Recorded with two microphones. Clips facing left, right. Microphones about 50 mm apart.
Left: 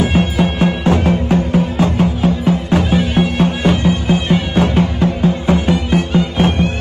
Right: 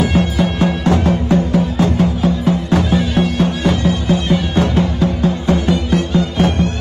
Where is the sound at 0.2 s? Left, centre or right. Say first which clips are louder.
Left 1 dB; left.